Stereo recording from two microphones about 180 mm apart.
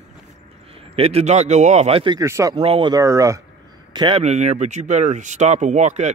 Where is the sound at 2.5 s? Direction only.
30° right (ahead or behind).